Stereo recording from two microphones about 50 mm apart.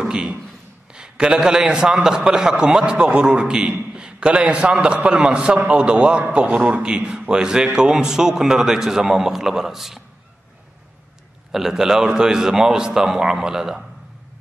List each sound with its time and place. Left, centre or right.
0.0 s a sound: centre
0.9 s a man's voice: centre
11.5 s a man's voice: centre